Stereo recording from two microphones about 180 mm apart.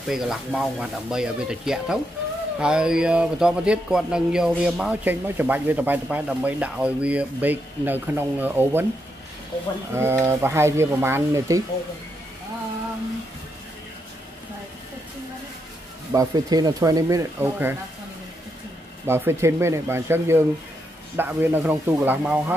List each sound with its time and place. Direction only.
0.1 s speech: centre (ahead or behind)
9.9 s speech: 15° right (ahead or behind)
16.1 s speech: 20° right (ahead or behind)
19.0 s speech: 15° right (ahead or behind)